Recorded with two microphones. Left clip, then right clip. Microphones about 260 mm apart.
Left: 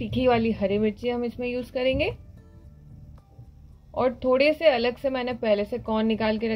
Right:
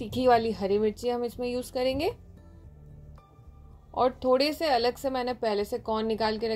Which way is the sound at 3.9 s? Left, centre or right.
Right.